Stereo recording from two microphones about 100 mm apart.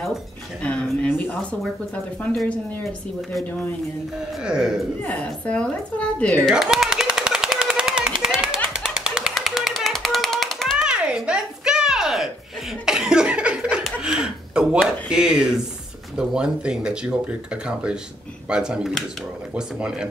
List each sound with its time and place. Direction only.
0.6 s speech: 15° left (ahead or behind)
4.5 s speech: 10° right (ahead or behind)
5.0 s speech: 15° left (ahead or behind)
6.5 s machine gun: 5° right (ahead or behind)
8.6 s a sound: 5° right (ahead or behind)
12.8 s laughter: 5° right (ahead or behind)
14.0 s gasp: 5° right (ahead or behind)
16.2 s speech: 10° right (ahead or behind)